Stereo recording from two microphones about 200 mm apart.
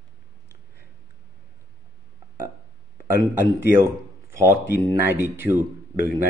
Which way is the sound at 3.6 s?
15° right (ahead or behind).